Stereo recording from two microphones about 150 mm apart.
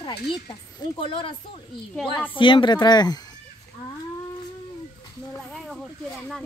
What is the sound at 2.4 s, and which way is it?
Speech, 35° left (ahead or behind).